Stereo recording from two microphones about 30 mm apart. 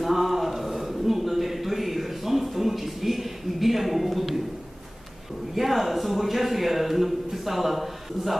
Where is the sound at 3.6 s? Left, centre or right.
Centre.